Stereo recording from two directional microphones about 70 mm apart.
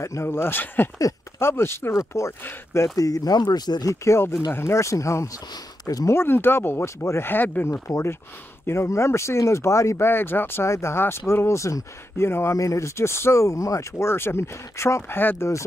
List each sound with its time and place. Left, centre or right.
0.0 s speech: left
3.0 s speech: left
3.8 s speech: left
5.5 s speech: left
6.0 s speech: left
7.6 s speech: left